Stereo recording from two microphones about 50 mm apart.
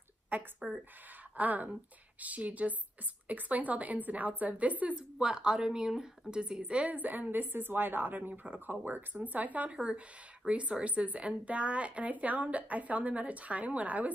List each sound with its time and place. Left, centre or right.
0.3 s a woman's voice: right
5.2 s a woman's voice: centre; by 14.1 s right